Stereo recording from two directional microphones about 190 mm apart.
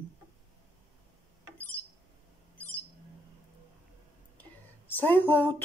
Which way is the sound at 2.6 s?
10° left (ahead or behind).